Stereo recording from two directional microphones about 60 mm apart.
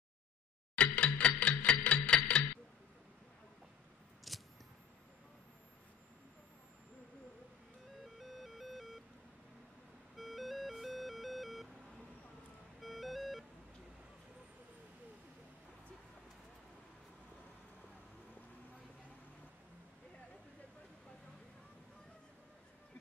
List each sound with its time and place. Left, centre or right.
0.7 s music: left
1.1 s guitar: left
4.3 s a sound: centre
8.0 s music: centre
10.1 s music: centre
12.8 s music: centre